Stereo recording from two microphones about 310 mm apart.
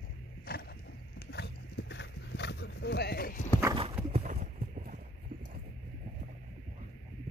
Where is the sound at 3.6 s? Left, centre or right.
Centre.